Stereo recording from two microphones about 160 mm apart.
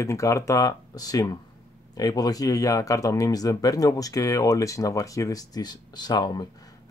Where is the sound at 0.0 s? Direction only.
20° left (ahead or behind).